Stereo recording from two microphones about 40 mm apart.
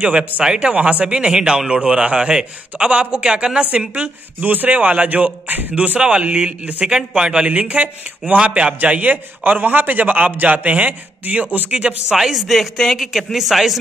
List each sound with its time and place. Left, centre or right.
0.6 s a man's voice: right
1.0 s a man's voice: right
5.8 s speech: right
6.9 s a man's voice: centre
7.4 s a man's voice: right
8.8 s a man's voice: right
12.1 s speech: centre